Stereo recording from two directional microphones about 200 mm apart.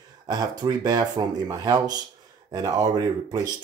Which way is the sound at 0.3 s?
20° right (ahead or behind).